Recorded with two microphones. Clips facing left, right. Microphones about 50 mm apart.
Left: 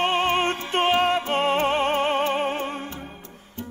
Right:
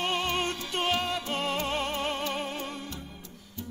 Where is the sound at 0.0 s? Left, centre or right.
Left.